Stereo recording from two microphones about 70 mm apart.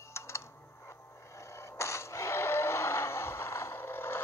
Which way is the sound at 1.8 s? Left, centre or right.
Left.